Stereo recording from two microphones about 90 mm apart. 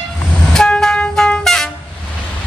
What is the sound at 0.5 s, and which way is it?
Train, 5° left (ahead or behind).